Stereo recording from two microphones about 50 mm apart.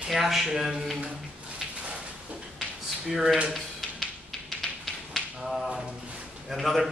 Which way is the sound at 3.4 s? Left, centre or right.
Centre.